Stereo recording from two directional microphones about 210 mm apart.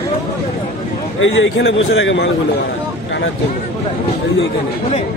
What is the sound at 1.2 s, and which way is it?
A man's voice, 65° left (ahead or behind).